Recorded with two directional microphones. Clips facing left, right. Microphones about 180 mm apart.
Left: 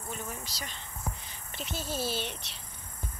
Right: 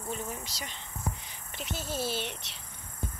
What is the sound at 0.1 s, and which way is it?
Speech, 25° right (ahead or behind).